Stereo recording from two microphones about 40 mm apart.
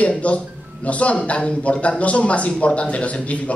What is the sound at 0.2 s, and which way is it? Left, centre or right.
Speech, left.